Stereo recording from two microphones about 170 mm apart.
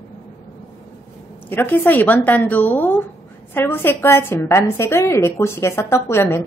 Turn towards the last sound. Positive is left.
turn(degrees=15)  # may be behind; listen again after turning